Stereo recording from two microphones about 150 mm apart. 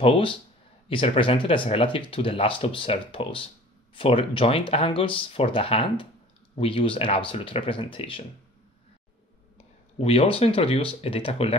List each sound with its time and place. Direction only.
0.0 s speech: 35° left (ahead or behind)
9.9 s speech: 40° left (ahead or behind)